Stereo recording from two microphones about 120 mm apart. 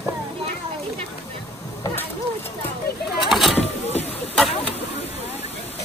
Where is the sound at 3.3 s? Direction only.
Centre (ahead or behind).